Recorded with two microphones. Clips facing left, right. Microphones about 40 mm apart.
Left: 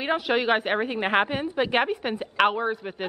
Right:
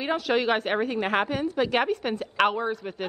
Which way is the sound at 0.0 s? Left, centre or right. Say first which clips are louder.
Left 1 dB; centre.